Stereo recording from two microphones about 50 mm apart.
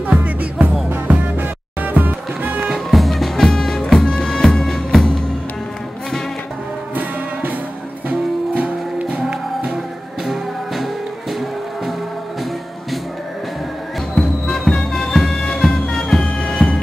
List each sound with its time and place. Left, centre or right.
0.1 s music: right
2.9 s music: centre
8.1 s music: right
10.2 s music: centre
14.1 s music: centre